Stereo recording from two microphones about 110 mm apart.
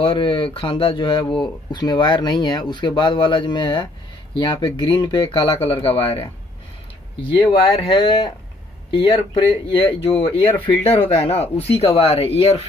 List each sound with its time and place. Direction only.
0.0 s speech: 55° left (ahead or behind)
5.3 s speech: 60° left (ahead or behind)
7.3 s speech: 60° left (ahead or behind)